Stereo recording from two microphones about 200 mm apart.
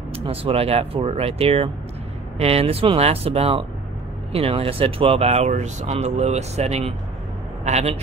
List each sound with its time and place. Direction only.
0.1 s speech: 30° right (ahead or behind)